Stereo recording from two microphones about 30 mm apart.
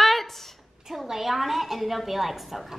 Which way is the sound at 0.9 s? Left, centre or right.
Centre.